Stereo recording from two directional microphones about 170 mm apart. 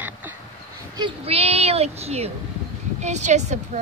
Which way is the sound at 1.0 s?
30° right (ahead or behind).